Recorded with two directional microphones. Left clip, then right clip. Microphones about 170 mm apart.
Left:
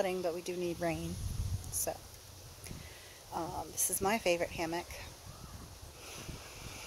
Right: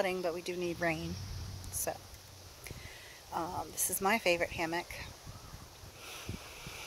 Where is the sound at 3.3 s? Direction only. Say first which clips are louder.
Right 2 dB; 15° right (ahead or behind).